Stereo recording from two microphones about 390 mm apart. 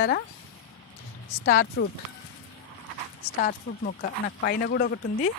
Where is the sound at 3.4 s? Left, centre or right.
Left.